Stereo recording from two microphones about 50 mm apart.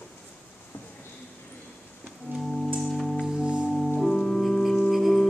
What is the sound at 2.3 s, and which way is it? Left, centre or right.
Music, right.